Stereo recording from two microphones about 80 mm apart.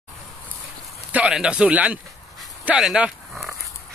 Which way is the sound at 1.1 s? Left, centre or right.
Centre.